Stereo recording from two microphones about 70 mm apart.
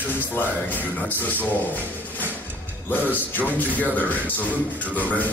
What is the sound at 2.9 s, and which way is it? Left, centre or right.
Speech, left.